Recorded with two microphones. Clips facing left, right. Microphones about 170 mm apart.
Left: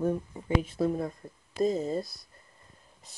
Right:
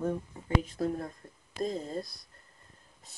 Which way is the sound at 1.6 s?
5° left (ahead or behind).